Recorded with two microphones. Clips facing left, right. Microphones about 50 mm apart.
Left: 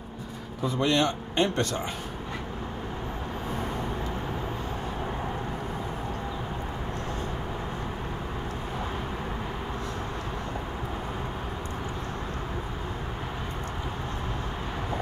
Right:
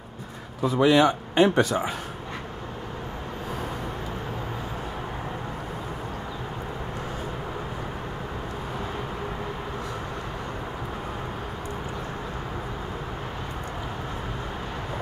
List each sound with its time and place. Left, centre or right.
0.6 s speech: centre